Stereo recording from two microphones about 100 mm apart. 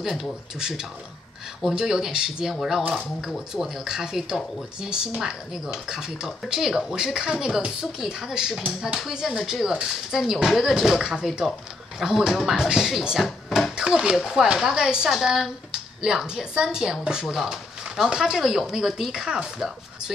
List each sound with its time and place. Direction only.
0.0 s speech: centre (ahead or behind)